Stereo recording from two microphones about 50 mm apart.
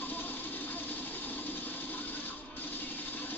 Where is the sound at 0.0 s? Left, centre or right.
Left.